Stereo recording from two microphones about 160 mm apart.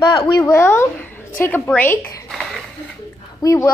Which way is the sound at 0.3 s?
20° left (ahead or behind).